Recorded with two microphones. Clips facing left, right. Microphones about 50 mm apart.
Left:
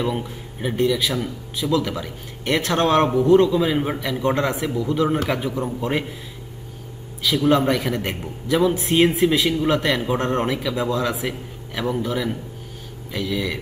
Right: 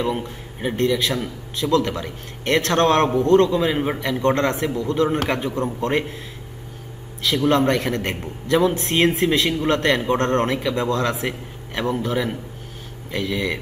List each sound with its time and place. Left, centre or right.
0.6 s a man's voice: centre
0.9 s a man's voice: centre
3.7 s a man's voice: centre
4.4 s a man's voice: centre
7.2 s a man's voice: centre